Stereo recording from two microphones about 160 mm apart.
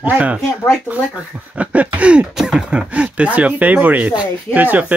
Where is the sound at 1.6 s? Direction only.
10° right (ahead or behind).